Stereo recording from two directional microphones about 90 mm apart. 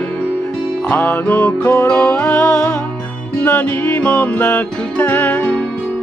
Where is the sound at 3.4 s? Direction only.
20° left (ahead or behind).